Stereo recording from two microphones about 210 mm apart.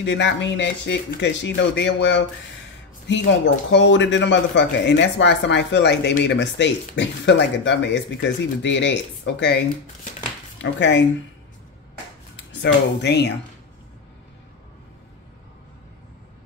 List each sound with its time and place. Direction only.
0.0 s a man's voice: 55° left (ahead or behind)
10.6 s a man's voice: 60° left (ahead or behind)
13.0 s speech: 55° left (ahead or behind)